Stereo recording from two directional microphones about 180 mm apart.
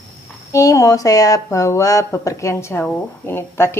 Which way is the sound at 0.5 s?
20° left (ahead or behind).